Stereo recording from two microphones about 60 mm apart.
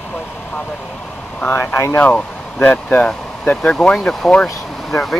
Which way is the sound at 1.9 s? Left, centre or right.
Left.